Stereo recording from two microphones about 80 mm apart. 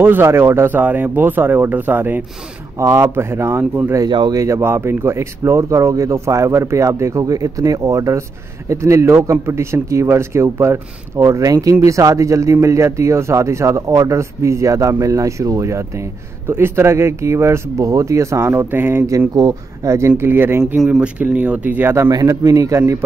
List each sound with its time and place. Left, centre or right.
0.0 s speech: right
19.0 s speech: right
20.1 s speech: right
22.4 s speech: right